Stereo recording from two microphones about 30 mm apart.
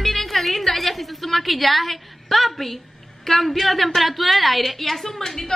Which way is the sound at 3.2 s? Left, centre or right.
Centre.